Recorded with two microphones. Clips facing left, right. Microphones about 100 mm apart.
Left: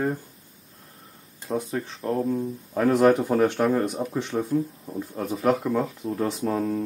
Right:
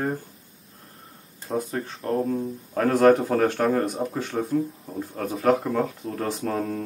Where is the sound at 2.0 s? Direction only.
20° left (ahead or behind).